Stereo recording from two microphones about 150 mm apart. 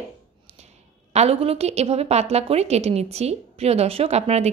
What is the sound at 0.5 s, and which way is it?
A woman's voice, 45° right (ahead or behind).